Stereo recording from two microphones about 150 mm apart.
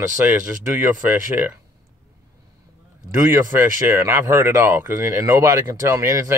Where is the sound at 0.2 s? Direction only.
15° right (ahead or behind).